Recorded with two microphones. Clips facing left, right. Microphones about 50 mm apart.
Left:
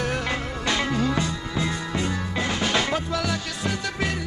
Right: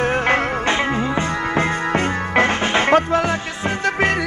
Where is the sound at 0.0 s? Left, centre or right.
Right.